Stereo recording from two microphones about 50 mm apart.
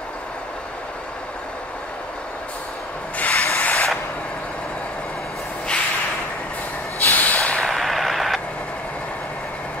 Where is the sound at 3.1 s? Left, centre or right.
Left.